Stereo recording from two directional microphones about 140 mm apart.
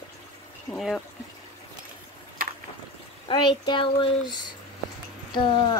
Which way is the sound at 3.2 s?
35° left (ahead or behind).